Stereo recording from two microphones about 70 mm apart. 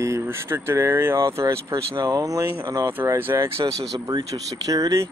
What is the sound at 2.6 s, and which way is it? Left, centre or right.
Speech, right.